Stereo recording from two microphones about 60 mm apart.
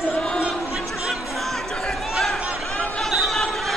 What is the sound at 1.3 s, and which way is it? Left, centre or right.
Chatter, centre.